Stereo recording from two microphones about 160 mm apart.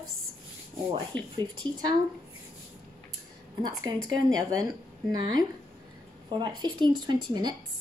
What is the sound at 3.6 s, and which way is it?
Speech, 25° right (ahead or behind).